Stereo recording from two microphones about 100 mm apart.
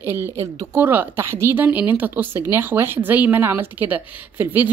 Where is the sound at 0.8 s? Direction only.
20° right (ahead or behind).